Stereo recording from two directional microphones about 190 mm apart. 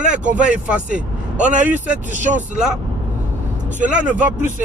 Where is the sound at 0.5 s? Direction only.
5° right (ahead or behind).